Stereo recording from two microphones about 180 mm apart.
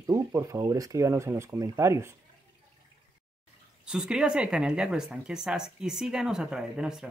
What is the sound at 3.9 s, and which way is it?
Speech, 5° right (ahead or behind).